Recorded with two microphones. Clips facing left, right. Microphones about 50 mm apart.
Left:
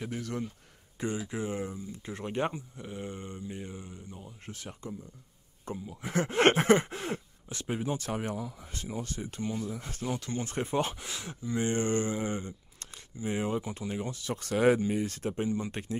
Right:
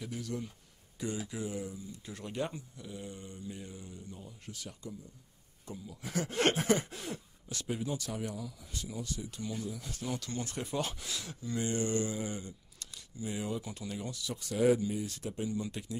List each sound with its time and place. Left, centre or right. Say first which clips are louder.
0.0 s speech: left 4 dB; left
0.9 s speech: left 4 dB; left
10.0 s speech: left 4 dB; left
14.3 s speech: left 3 dB; left